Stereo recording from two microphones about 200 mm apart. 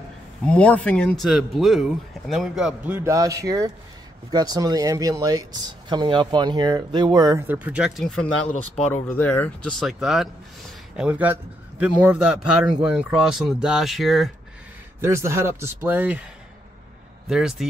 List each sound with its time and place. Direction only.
0.5 s speech: 5° left (ahead or behind)
8.5 s speech: 35° left (ahead or behind)
9.0 s speech: 10° left (ahead or behind)
15.0 s speech: 15° right (ahead or behind)
17.3 s speech: centre (ahead or behind)